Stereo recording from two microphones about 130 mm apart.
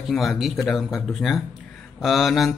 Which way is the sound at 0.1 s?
Centre (ahead or behind).